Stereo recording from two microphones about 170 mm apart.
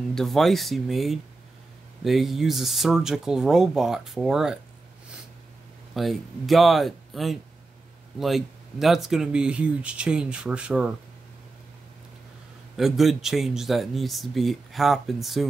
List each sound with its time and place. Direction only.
0.1 s speech: centre (ahead or behind)
5.9 s speech: centre (ahead or behind)
12.7 s speech: centre (ahead or behind)